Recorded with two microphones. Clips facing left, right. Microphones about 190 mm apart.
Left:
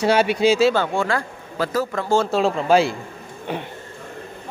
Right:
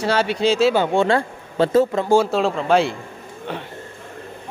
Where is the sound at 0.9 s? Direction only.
25° right (ahead or behind).